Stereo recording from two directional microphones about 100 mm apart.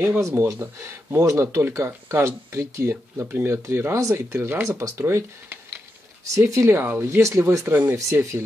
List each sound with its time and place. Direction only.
0.2 s speech: 25° right (ahead or behind)
6.7 s speech: 20° right (ahead or behind)